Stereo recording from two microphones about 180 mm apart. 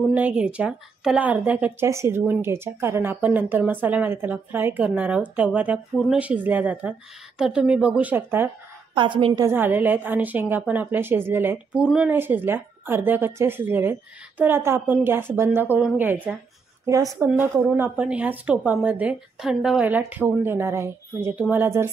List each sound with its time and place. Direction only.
0.1 s speech: 5° right (ahead or behind)
8.9 s speech: 25° right (ahead or behind)